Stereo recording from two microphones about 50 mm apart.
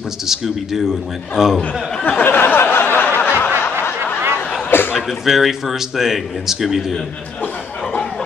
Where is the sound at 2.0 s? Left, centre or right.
Left.